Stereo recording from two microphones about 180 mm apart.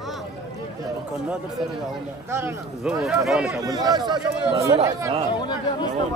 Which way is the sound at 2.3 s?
15° right (ahead or behind).